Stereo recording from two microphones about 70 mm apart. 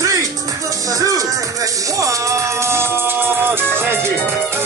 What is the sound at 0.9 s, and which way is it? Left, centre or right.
Speech, right.